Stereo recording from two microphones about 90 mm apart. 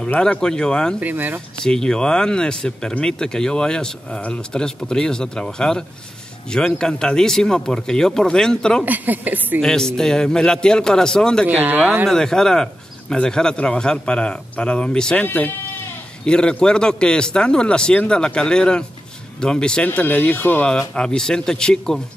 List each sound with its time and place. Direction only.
0.0 s speech: 10° left (ahead or behind)
0.9 s a woman's voice: 20° right (ahead or behind)
1.6 s speech: 5° left (ahead or behind)
8.8 s a woman's voice: 20° right (ahead or behind)
9.6 s speech: 5° left (ahead or behind)
11.4 s a woman's voice: 20° right (ahead or behind)
12.1 s speech: 5° left (ahead or behind)